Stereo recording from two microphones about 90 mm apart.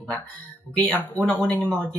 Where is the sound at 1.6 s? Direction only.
5° left (ahead or behind).